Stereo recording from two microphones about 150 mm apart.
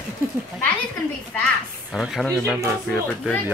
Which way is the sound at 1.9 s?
Centre (ahead or behind).